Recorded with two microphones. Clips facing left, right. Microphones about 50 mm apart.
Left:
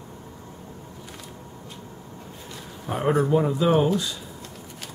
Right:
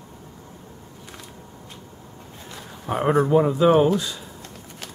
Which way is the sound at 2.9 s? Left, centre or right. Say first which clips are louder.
Right 3 dB; centre.